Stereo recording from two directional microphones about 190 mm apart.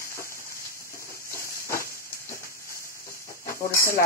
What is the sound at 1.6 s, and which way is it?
Hiss, 15° left (ahead or behind).